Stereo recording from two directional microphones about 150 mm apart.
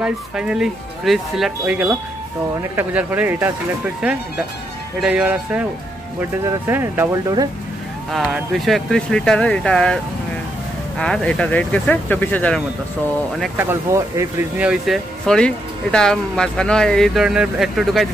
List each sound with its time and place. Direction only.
0.0 s speech: 5° right (ahead or behind)
5.0 s speech: 10° right (ahead or behind)
8.1 s speech: centre (ahead or behind)
11.0 s speech: 5° left (ahead or behind)
13.6 s speech: 15° right (ahead or behind)
14.7 s speech: centre (ahead or behind)